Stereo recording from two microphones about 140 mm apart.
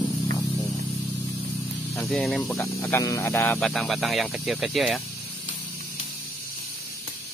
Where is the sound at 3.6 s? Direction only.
Centre (ahead or behind).